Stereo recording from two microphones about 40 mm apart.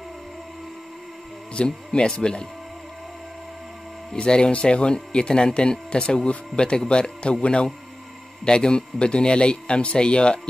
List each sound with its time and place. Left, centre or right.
1.5 s speech: left
4.1 s speech: left